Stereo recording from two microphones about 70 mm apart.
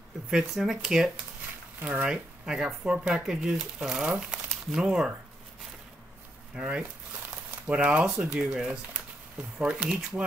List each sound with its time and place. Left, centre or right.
0.3 s speech: centre
1.8 s speech: right
6.5 s speech: centre